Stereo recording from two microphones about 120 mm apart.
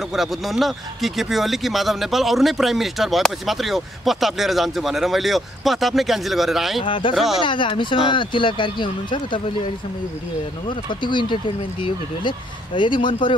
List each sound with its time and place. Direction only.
0.1 s speech: centre (ahead or behind)
6.8 s speech: 45° left (ahead or behind)
10.7 s speech: 40° left (ahead or behind)